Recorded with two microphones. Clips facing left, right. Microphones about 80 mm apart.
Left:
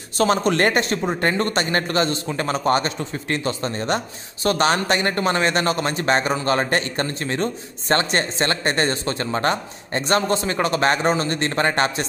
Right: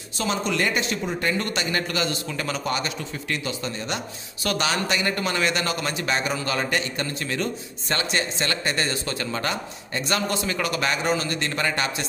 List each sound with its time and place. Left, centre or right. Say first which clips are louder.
0.2 s speech: left 7 dB; left